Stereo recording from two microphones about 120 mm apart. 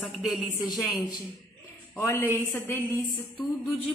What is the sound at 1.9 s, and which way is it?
Speech, 20° left (ahead or behind).